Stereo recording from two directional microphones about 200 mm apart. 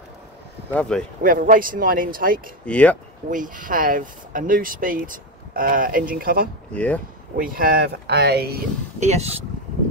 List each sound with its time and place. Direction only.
0.7 s speech: 5° left (ahead or behind)
1.2 s speech: 45° right (ahead or behind)
2.6 s speech: 5° left (ahead or behind)
3.3 s speech: 40° right (ahead or behind)
6.7 s speech: 5° left (ahead or behind)
7.3 s speech: 45° right (ahead or behind)
9.0 s speech: 35° right (ahead or behind)